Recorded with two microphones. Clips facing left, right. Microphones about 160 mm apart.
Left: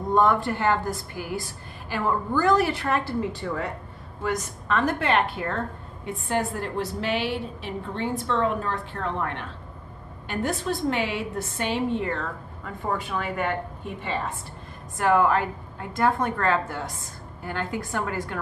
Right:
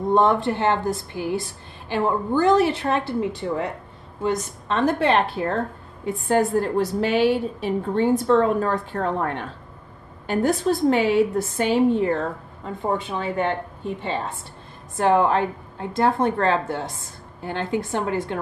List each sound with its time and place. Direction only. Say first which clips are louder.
0.1 s a woman's voice: right 2 dB; 25° right (ahead or behind)
12.6 s a woman's voice: right 4 dB; 25° right (ahead or behind)